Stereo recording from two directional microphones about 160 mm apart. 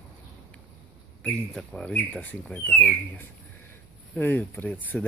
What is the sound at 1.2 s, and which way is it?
Speech, 5° left (ahead or behind).